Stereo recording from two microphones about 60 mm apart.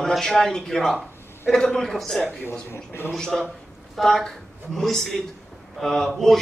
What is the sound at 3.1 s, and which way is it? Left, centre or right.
A man's voice, centre.